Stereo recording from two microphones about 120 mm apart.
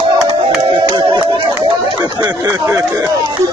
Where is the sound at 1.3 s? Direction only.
45° right (ahead or behind).